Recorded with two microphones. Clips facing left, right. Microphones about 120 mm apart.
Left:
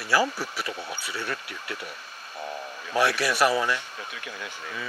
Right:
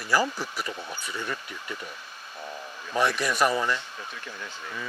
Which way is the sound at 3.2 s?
5° left (ahead or behind).